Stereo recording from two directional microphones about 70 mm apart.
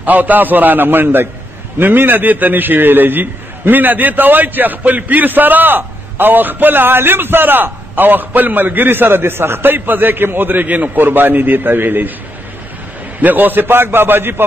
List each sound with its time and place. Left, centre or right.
0.0 s a man's voice: right
13.2 s a man's voice: right